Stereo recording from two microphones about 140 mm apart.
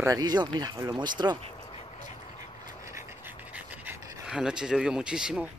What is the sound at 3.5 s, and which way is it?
Pant, 15° right (ahead or behind).